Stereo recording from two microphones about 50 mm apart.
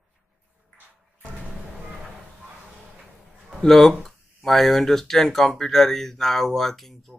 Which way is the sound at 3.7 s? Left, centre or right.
Centre.